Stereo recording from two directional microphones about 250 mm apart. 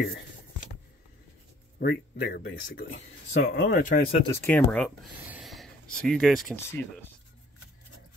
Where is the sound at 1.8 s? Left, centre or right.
Left.